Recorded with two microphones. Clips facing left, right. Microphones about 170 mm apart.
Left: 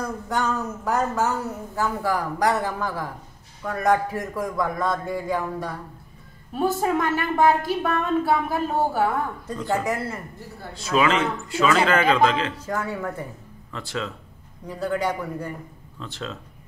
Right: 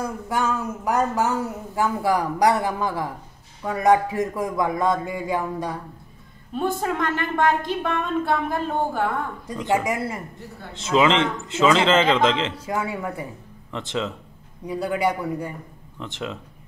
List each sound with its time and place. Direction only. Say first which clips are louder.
0.0 s speech: right 1 dB; 10° right (ahead or behind)
6.5 s a woman's voice: left 2 dB; 5° left (ahead or behind)
9.5 s speech: right 3 dB; 15° right (ahead or behind)
12.6 s speech: right 1 dB; 10° right (ahead or behind)